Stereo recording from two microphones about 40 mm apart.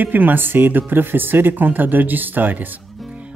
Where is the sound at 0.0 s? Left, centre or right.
Right.